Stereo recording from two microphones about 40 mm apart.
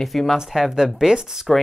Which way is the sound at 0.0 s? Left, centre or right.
Centre.